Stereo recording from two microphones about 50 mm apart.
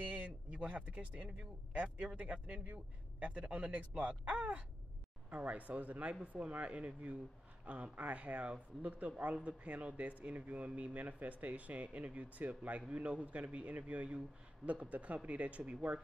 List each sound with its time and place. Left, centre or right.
0.0 s a man's voice: right